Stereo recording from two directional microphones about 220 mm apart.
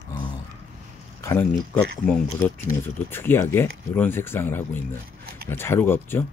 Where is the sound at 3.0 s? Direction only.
10° left (ahead or behind).